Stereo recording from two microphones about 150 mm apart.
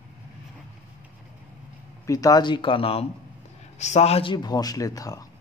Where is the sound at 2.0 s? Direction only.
20° left (ahead or behind).